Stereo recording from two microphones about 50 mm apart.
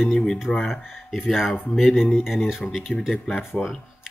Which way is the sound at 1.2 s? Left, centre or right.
Centre.